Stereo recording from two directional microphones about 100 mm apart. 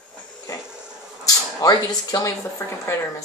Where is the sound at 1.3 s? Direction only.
40° left (ahead or behind).